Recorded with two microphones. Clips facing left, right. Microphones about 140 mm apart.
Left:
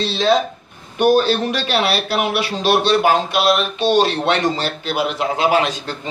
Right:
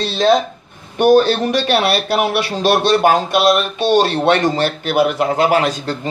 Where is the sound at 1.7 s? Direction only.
55° right (ahead or behind).